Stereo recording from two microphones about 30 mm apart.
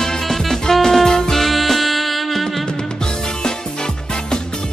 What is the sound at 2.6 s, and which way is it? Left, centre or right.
Music, left.